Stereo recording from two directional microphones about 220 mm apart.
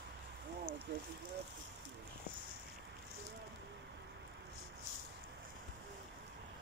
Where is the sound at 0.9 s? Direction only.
50° right (ahead or behind).